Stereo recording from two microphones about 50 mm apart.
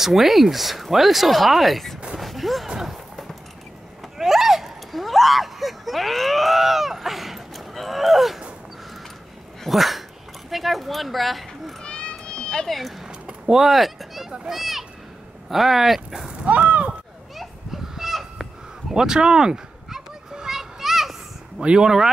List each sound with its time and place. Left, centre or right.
0.0 s speech: centre
2.1 s a sound: centre
2.7 s music: centre
4.2 s a sound: centre
9.6 s dog: centre
10.5 s speech: centre
11.8 s cat: left
12.6 s a child's voice: centre
16.3 s speech: right
17.9 s meow: centre
21.5 s speech: centre